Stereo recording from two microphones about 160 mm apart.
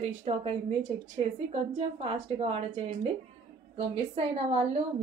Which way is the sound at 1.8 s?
35° right (ahead or behind).